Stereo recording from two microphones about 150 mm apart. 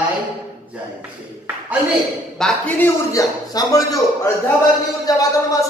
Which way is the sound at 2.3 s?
5° left (ahead or behind).